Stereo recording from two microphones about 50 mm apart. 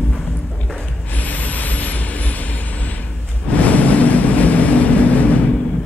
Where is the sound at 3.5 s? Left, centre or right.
Left.